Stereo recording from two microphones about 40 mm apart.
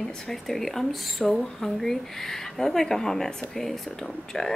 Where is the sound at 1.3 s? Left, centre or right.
Centre.